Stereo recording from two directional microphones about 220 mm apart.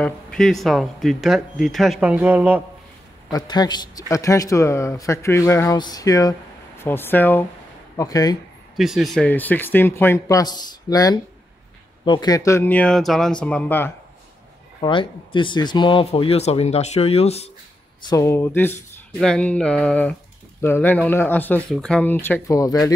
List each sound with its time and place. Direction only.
0.0 s speech: 5° left (ahead or behind)
3.3 s speech: 20° left (ahead or behind)
8.7 s speech: centre (ahead or behind)
14.8 s speech: 20° left (ahead or behind)
18.0 s speech: 15° left (ahead or behind)